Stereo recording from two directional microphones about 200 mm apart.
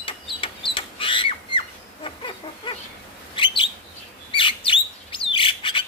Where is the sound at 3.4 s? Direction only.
25° left (ahead or behind).